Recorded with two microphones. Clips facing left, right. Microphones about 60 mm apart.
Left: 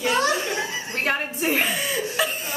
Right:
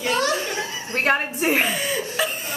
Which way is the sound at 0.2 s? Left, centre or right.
Left.